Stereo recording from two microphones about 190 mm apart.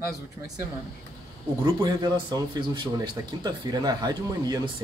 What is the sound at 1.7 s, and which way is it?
A man's voice, 20° right (ahead or behind).